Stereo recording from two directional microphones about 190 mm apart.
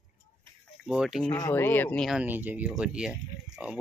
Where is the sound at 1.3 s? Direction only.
10° left (ahead or behind).